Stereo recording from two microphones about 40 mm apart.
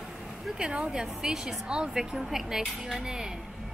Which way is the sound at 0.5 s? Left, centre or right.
Right.